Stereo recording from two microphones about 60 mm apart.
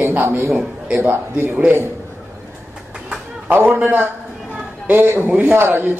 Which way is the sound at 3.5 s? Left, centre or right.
Right.